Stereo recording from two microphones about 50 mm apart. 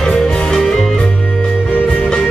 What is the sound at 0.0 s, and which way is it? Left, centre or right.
Music, centre.